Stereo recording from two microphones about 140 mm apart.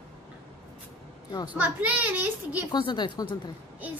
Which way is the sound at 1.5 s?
10° right (ahead or behind).